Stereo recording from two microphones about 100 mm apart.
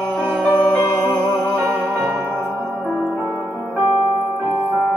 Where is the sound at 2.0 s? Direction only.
20° right (ahead or behind).